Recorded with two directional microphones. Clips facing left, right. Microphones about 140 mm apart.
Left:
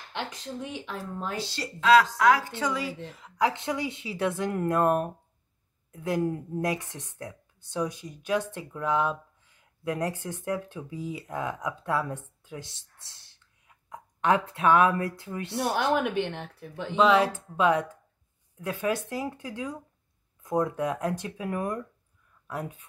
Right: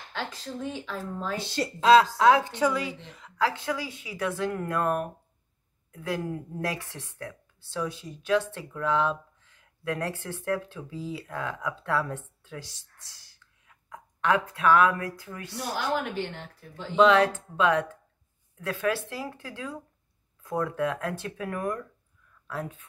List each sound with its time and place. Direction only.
0.1 s speech: 20° left (ahead or behind)
1.8 s a woman's voice: 30° right (ahead or behind)
2.6 s speech: centre (ahead or behind)
3.3 s a woman's voice: 20° left (ahead or behind)
15.5 s speech: 60° left (ahead or behind)
16.9 s speech: 5° left (ahead or behind)